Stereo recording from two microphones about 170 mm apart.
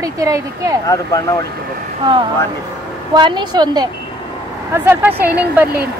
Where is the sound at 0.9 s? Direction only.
20° left (ahead or behind).